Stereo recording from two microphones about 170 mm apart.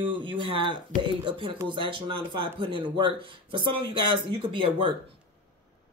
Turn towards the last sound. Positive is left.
turn(degrees=-30)  # may be behind; listen again after turning